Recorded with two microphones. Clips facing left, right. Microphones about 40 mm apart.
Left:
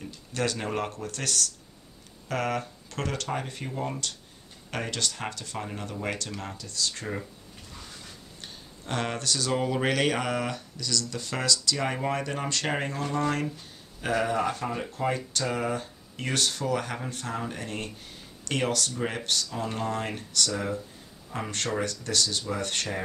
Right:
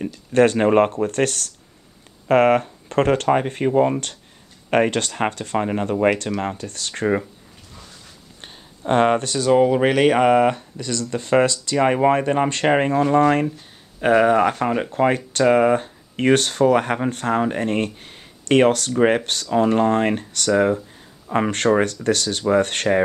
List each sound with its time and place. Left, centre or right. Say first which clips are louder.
0.0 s speech: right 14 dB; right
8.4 s speech: right 4 dB; right